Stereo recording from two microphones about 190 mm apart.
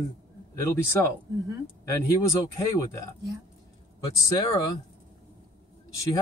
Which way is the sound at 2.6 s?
15° left (ahead or behind).